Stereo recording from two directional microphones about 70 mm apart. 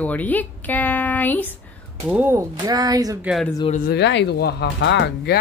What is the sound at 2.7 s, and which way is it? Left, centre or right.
Speech, right.